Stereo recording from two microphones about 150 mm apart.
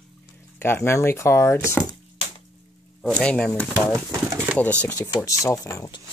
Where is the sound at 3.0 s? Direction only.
5° left (ahead or behind).